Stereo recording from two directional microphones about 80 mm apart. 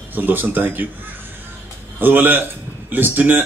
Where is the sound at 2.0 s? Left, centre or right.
Right.